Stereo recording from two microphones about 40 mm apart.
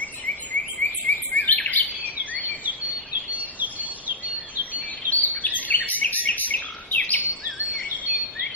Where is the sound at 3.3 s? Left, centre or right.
Right.